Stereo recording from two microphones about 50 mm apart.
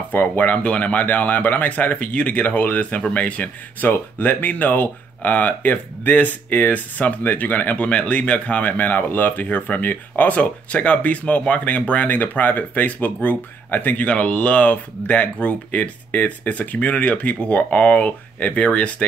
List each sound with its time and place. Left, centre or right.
0.1 s speech: left
0.6 s speech: left
3.9 s speech: left
14.0 s speech: left